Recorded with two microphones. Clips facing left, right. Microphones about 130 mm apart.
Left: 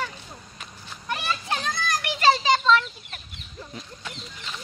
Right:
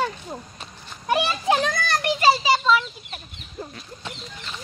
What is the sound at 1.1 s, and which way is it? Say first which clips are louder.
Speech: right 8 dB; 85° right.